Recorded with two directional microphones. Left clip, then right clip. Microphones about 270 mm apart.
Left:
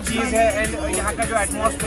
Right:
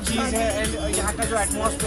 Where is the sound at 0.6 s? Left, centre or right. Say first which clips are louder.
Left 3 dB; centre.